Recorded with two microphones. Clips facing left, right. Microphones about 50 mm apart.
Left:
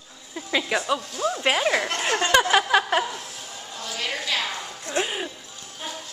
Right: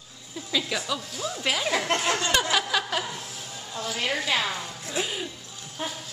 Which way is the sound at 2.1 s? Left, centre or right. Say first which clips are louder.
Left 5 dB; left.